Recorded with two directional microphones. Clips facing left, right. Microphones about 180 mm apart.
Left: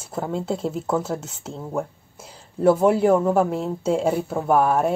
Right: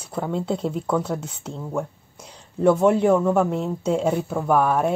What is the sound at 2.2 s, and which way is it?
Speech, 5° left (ahead or behind).